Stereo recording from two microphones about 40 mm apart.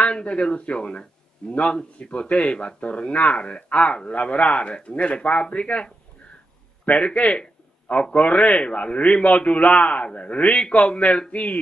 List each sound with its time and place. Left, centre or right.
0.0 s a man's voice: left
6.9 s speech: centre
7.2 s a man's voice: left